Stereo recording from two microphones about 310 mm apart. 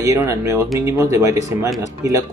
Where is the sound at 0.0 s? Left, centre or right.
Centre.